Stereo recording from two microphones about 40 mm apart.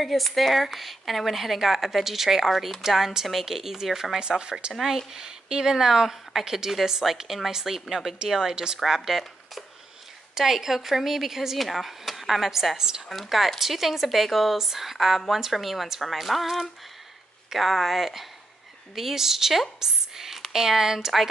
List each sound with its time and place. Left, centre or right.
0.0 s speech: centre
4.2 s speech: right
13.1 s speech: centre